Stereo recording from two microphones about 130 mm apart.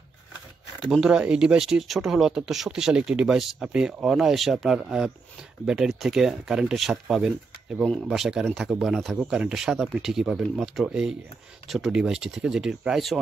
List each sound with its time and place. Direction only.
0.8 s speech: 5° right (ahead or behind)